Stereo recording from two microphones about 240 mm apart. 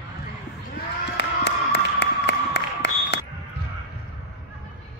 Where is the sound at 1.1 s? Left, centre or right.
Left.